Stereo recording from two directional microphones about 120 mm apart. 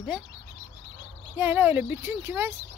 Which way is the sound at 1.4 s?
15° right (ahead or behind).